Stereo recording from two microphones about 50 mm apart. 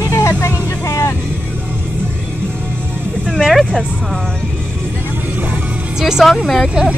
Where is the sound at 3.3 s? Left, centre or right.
Centre.